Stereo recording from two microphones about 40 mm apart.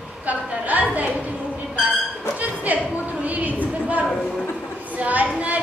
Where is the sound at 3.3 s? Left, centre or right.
Right.